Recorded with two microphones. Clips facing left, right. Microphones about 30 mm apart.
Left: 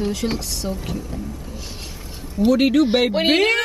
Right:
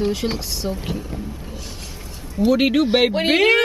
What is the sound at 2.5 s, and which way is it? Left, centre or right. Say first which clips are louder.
Speech: left 2 dB; centre.